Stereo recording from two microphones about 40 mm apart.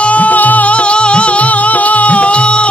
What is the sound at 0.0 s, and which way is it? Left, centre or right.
Music, left.